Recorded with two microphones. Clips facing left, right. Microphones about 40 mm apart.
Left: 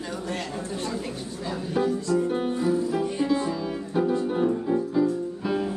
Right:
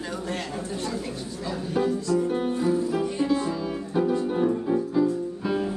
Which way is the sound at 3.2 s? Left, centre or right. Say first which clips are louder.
Even; centre.